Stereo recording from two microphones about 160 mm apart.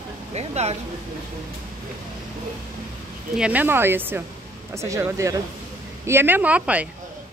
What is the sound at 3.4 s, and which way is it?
Speech, 10° right (ahead or behind).